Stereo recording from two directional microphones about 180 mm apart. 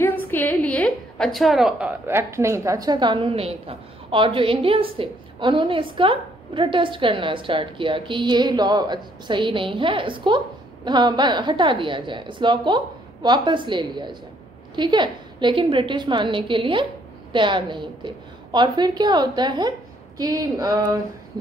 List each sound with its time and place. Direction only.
0.3 s a woman's voice: 10° left (ahead or behind); by 21.0 s 20° right (ahead or behind)